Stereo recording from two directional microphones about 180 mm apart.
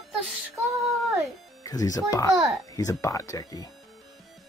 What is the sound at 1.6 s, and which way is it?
Speech, 20° left (ahead or behind).